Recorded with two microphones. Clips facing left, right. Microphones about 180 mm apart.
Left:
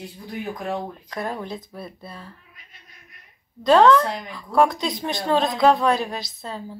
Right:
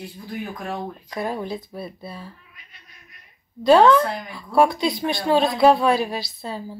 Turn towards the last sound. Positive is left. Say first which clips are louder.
# right 2 dB
turn(degrees=-5)  # may be behind; listen again after turning